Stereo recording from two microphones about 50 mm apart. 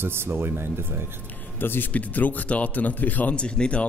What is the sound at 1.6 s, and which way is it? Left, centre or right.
Speech, left.